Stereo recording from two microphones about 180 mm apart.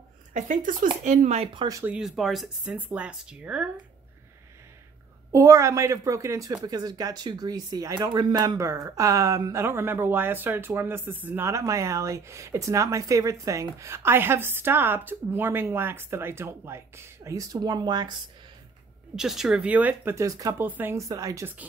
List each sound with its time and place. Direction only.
0.3 s speech: 45° right (ahead or behind); by 1.8 s 25° right (ahead or behind)
1.8 s speech: 5° right (ahead or behind)
5.3 s speech: 15° right (ahead or behind)
19.1 s speech: centre (ahead or behind)